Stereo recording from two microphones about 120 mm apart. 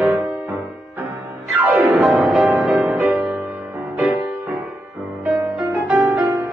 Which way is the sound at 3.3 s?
15° right (ahead or behind).